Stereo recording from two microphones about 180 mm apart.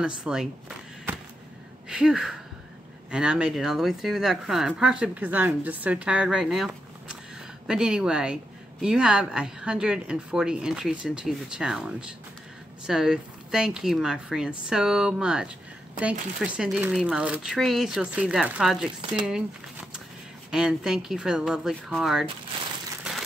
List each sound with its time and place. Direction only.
0.0 s speech: 5° right (ahead or behind)
20.5 s speech: 5° right (ahead or behind)